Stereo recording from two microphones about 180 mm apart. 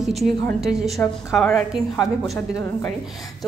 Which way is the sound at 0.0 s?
Centre (ahead or behind).